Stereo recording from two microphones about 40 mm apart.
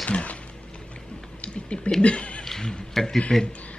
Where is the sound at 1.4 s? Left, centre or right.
Left.